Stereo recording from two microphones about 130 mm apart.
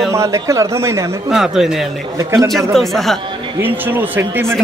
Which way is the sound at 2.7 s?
Centre (ahead or behind).